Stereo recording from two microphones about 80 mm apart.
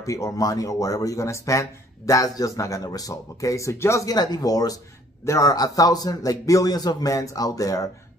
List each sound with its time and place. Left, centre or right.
0.0 s speech: left
4.0 s speech: left